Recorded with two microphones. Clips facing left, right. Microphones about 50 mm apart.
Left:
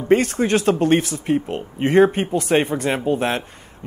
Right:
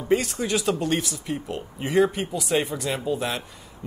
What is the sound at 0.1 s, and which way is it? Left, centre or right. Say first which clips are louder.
Speech: left 6 dB; left.